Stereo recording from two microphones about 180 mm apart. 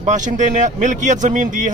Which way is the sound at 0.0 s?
45° right (ahead or behind).